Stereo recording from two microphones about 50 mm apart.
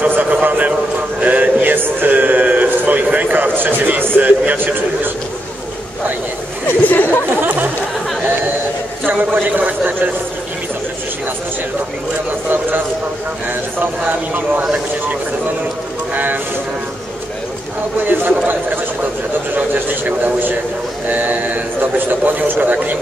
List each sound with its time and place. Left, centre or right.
0.1 s a man's voice: right
6.7 s speech: left
7.4 s chatter: right
9.0 s a man's voice: right
14.0 s a man's voice: right
18.0 s speech: right
19.5 s a man's voice: right